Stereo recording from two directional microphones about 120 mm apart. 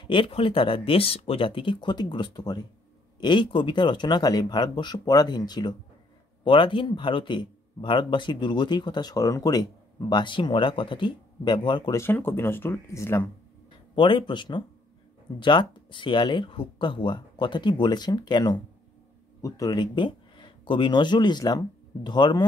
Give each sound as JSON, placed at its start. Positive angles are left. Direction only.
{"t": 0.0, "sound": "speech", "side_deg": 45}
{"t": 11.9, "sound": "speech", "side_deg": 20}
{"t": 13.9, "sound": "speech", "side_deg": 40}